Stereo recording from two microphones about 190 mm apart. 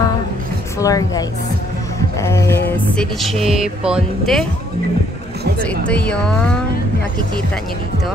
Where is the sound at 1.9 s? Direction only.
15° left (ahead or behind); by 4.4 s centre (ahead or behind).